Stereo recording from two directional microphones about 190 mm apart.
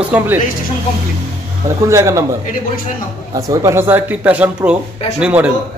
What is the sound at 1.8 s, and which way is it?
Speech, 15° right (ahead or behind).